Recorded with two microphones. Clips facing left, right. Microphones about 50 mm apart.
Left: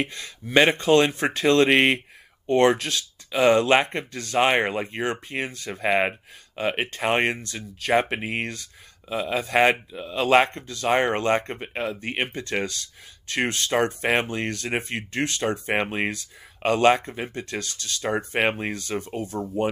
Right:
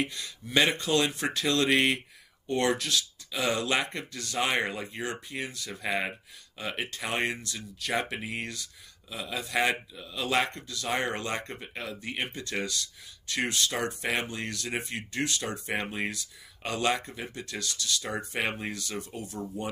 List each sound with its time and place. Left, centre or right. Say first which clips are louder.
0.0 s speech: left 3 dB; left